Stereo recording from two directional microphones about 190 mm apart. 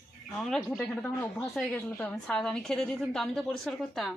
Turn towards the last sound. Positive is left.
turn(degrees=0)  # may be behind; listen again after turning